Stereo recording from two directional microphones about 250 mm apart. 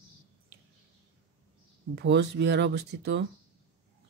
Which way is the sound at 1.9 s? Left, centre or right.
Right.